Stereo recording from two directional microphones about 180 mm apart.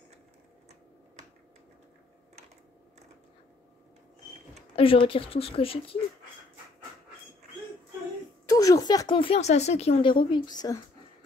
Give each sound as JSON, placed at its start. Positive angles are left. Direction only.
{"t": 4.7, "sound": "speech", "side_deg": 30}
{"t": 8.5, "sound": "speech", "side_deg": 20}